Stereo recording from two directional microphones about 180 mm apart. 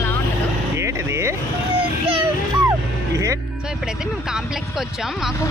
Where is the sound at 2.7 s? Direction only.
15° right (ahead or behind).